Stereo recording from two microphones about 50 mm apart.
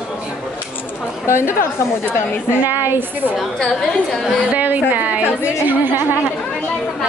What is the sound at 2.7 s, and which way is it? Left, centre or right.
Speech, right.